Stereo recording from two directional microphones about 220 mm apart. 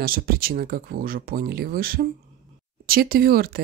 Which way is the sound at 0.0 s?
40° right (ahead or behind).